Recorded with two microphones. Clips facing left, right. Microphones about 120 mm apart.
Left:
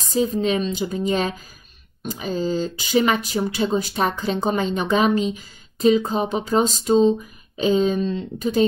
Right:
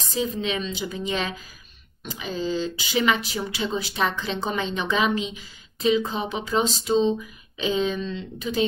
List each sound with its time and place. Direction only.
0.1 s speech: 45° left (ahead or behind)